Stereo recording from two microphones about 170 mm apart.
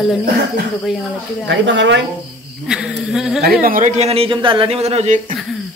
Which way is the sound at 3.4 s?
65° right (ahead or behind).